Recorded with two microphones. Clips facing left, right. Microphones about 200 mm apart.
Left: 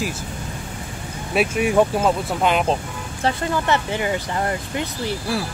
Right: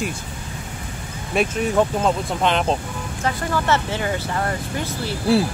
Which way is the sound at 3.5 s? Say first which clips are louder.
Even; 15° left (ahead or behind).